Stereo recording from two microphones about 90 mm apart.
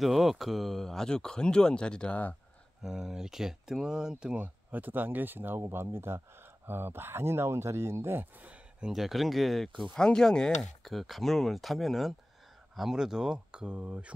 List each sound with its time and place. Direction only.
0.0 s speech: centre (ahead or behind); by 2.3 s 15° left (ahead or behind)
2.8 s speech: 5° right (ahead or behind)
8.8 s speech: centre (ahead or behind)